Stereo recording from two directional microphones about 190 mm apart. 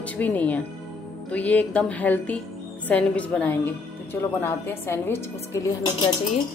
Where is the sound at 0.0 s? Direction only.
10° left (ahead or behind).